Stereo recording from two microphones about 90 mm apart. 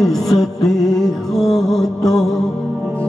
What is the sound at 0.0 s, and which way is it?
Music, 5° left (ahead or behind).